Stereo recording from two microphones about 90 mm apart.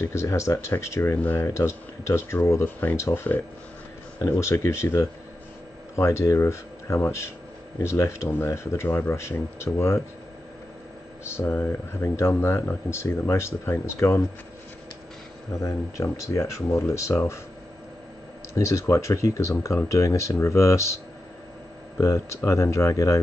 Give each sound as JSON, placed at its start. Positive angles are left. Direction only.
{"t": 0.0, "sound": "speech", "side_deg": 30}
{"t": 1.1, "sound": "speech", "side_deg": 20}
{"t": 1.5, "sound": "speech", "side_deg": 30}
{"t": 11.3, "sound": "speech", "side_deg": 25}
{"t": 15.6, "sound": "speech", "side_deg": 35}
{"t": 18.6, "sound": "speech", "side_deg": 35}